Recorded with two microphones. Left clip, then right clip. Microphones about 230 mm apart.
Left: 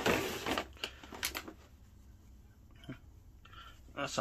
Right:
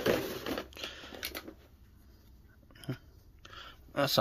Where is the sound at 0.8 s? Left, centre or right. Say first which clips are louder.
Right 1 dB; right.